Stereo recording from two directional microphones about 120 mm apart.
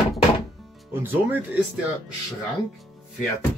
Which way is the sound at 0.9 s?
15° right (ahead or behind).